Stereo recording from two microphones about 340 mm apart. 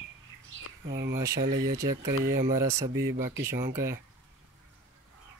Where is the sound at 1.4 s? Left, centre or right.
Right.